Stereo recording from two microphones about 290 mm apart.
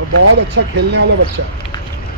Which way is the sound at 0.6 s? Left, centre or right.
Right.